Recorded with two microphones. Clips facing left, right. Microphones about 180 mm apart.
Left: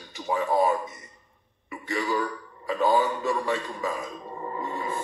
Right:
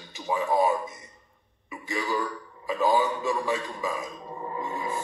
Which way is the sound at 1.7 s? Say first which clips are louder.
Left 2 dB; centre (ahead or behind).